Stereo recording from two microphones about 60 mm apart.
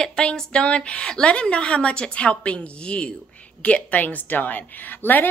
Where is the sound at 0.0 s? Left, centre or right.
Centre.